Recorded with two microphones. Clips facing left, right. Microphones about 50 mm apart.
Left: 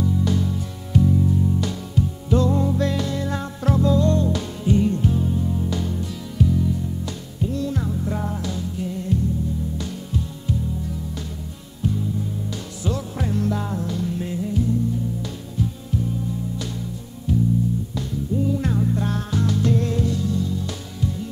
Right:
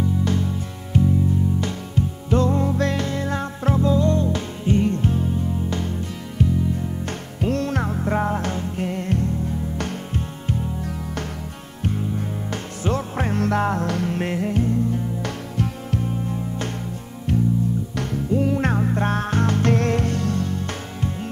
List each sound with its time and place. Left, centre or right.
0.2 s music: right
1.6 s music: right
3.6 s music: right
7.3 s music: right